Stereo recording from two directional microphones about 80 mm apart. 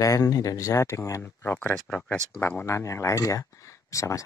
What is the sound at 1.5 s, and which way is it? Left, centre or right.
Speech, centre.